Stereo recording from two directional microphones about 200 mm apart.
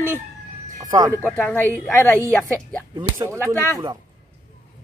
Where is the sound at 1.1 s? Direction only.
10° left (ahead or behind).